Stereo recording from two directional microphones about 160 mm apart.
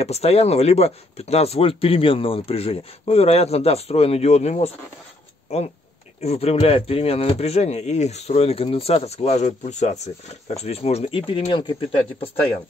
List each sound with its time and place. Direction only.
0.0 s speech: 40° left (ahead or behind)